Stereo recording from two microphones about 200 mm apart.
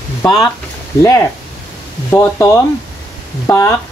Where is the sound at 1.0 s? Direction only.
15° left (ahead or behind).